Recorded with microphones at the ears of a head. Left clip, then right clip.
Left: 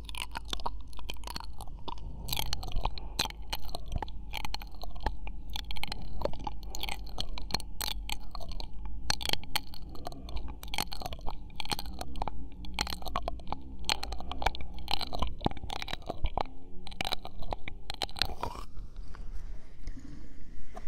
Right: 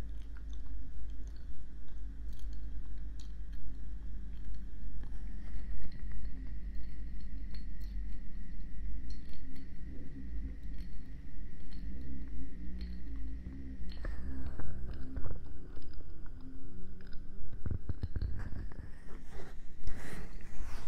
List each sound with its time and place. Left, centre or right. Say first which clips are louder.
0.0 s chewing: left 17 dB; left